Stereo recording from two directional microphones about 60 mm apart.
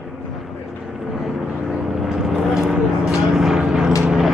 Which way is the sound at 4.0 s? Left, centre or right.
Centre.